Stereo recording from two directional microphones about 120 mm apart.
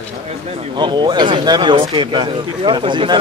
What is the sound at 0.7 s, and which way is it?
Speech, 40° right (ahead or behind).